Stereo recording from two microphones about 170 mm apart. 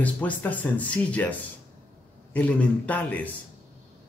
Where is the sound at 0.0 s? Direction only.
10° left (ahead or behind).